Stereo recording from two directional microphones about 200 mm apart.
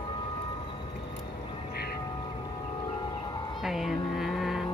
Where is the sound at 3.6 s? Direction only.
Centre (ahead or behind).